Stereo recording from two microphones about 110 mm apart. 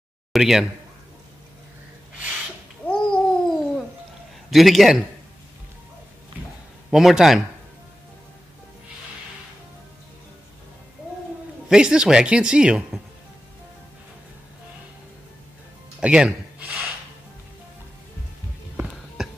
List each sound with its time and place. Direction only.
0.3 s speech: 5° right (ahead or behind)
2.9 s babbling: 5° left (ahead or behind)
4.5 s a man's voice: centre (ahead or behind)
6.9 s a man's voice: 5° right (ahead or behind)
11.7 s speech: 5° right (ahead or behind)
16.0 s music: 5° right (ahead or behind)